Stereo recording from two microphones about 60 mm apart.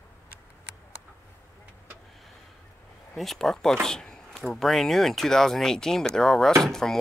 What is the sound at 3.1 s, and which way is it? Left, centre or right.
Speech, centre.